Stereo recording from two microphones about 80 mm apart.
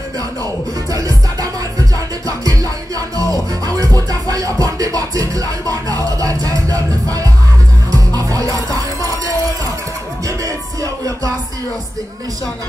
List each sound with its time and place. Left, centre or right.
0.9 s music: right